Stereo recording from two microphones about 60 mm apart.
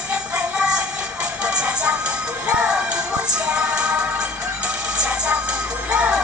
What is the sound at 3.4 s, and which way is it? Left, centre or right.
Music, centre.